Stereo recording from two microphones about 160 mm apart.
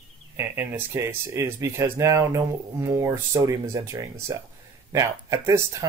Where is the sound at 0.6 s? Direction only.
15° right (ahead or behind).